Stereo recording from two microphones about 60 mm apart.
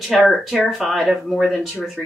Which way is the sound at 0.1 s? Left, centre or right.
Centre.